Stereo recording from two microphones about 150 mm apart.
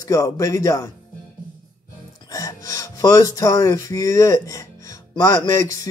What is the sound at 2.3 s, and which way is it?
Speech, 25° left (ahead or behind).